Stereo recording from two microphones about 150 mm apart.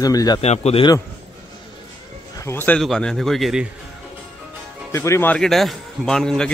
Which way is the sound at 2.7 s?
5° left (ahead or behind).